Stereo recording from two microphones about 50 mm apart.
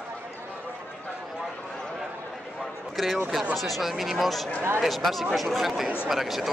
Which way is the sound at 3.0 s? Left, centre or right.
Centre.